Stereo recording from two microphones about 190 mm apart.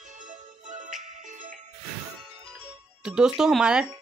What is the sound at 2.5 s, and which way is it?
Music, 5° right (ahead or behind).